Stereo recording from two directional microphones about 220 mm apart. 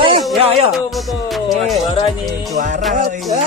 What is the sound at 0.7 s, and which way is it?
Speech, centre (ahead or behind).